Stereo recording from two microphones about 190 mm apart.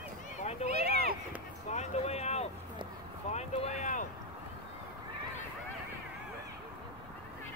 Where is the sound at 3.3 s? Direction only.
40° left (ahead or behind).